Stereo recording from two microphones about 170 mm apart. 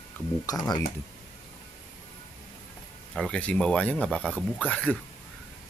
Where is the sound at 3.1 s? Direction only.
5° left (ahead or behind).